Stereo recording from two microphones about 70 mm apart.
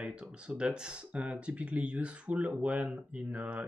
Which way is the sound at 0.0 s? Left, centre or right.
Centre.